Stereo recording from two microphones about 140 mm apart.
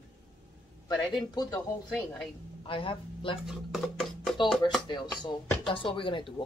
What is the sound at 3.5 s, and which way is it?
Speech, centre (ahead or behind).